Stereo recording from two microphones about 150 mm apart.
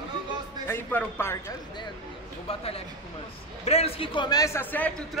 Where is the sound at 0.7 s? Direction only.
15° left (ahead or behind).